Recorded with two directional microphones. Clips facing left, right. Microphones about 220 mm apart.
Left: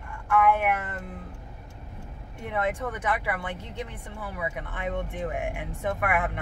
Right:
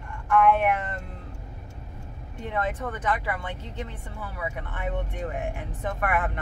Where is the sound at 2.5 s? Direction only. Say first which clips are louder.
Left 1 dB; 10° left (ahead or behind).